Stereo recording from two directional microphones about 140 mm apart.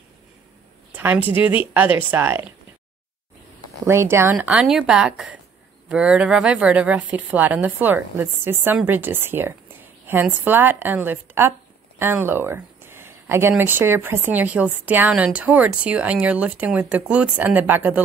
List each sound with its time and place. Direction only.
0.9 s speech: 10° right (ahead or behind)
3.8 s speech: 20° right (ahead or behind)